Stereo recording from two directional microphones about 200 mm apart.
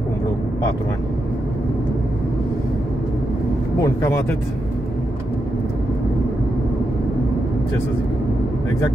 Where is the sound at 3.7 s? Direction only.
15° left (ahead or behind).